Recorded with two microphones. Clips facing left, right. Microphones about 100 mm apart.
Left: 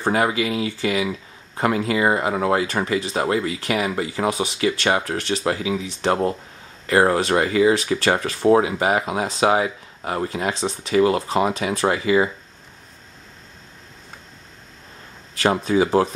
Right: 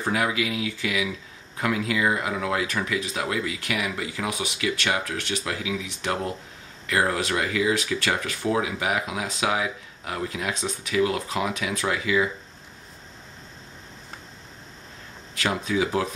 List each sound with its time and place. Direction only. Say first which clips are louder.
0.0 s speech: left 5 dB; 35° left (ahead or behind)
15.3 s speech: left 7 dB; 35° left (ahead or behind)